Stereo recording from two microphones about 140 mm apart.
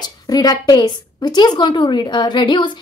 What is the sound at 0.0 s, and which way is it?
A woman's voice, 30° left (ahead or behind).